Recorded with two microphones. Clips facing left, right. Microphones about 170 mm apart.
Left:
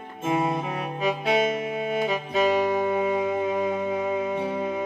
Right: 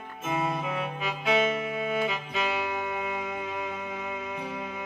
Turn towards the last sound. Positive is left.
turn(degrees=30)  # may be behind; listen again after turning